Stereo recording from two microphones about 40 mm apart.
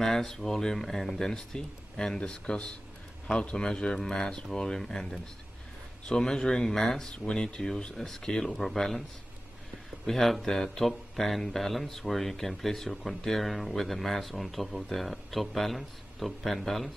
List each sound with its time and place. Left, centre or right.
0.0 s speech: centre
8.5 s speech: centre
10.0 s speech: centre
10.4 s speech: centre